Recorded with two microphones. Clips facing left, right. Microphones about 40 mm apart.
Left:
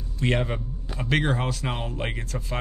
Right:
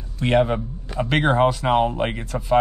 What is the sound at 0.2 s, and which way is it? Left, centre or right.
Speech, centre.